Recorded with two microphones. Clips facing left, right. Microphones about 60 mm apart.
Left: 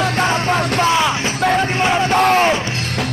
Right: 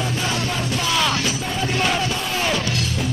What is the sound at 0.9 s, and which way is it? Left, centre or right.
Music, left.